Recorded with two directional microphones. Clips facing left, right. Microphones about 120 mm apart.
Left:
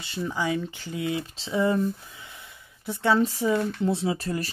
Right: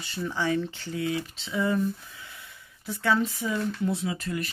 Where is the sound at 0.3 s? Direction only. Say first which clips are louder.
Right 1 dB; 10° left (ahead or behind); by 1.8 s 30° left (ahead or behind).